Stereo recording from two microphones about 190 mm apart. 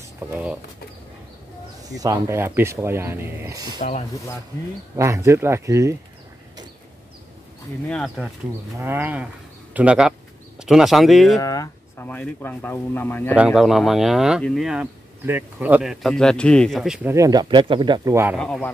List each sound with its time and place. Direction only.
0.2 s speech: 10° right (ahead or behind)
1.9 s speech: 20° right (ahead or behind)
4.9 s speech: 15° right (ahead or behind)
7.9 s speech: centre (ahead or behind)
8.7 s speech: 10° right (ahead or behind)
11.4 s speech: 15° left (ahead or behind)
13.3 s speech: 5° right (ahead or behind)
17.1 s speech: 20° right (ahead or behind)
18.4 s speech: 5° left (ahead or behind)